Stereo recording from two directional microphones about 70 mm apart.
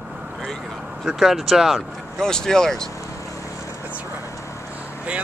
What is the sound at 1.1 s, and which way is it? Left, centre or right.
Speech, centre.